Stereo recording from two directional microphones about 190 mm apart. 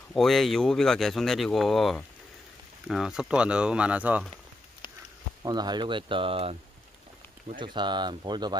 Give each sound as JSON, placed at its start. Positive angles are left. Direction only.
{"t": 0.1, "sound": "speech", "side_deg": 0}
{"t": 5.4, "sound": "speech", "side_deg": -20}